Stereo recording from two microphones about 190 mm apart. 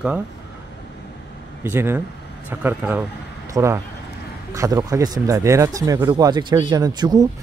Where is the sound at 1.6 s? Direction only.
10° right (ahead or behind).